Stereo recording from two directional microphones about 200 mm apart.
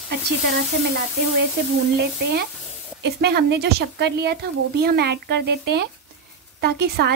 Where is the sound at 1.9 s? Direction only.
55° right (ahead or behind).